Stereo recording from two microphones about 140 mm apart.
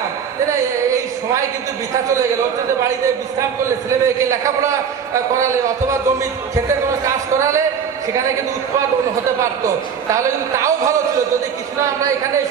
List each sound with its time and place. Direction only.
3.9 s a man's voice: 20° right (ahead or behind)
10.0 s a man's voice: 20° right (ahead or behind)